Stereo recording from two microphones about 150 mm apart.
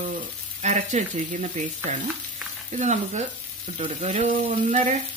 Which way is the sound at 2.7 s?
50° right (ahead or behind).